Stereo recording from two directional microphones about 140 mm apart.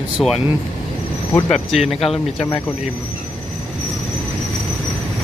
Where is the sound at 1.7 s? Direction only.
Centre (ahead or behind).